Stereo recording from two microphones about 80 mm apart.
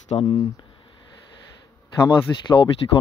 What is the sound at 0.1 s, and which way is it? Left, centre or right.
Speech, left.